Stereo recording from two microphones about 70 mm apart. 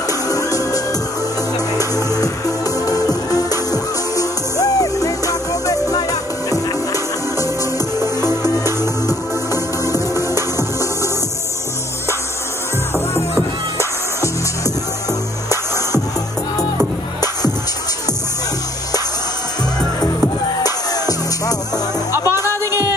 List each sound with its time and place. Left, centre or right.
0.3 s music: left
9.0 s music: left
13.7 s music: left
20.6 s music: left
22.4 s music: left